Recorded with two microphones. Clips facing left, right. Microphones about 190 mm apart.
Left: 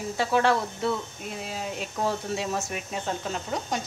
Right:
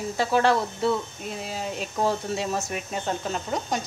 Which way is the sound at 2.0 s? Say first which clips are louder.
Right 2 dB; 40° right (ahead or behind).